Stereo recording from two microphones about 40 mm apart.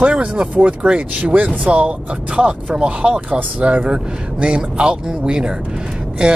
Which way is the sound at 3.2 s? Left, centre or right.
Right.